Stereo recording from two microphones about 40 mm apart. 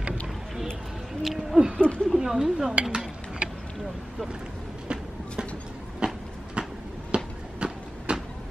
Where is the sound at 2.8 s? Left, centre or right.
Right.